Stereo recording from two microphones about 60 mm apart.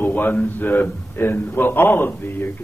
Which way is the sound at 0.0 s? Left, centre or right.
Left.